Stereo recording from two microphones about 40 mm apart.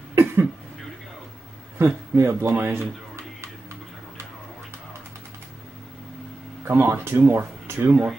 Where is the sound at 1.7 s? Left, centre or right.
Right.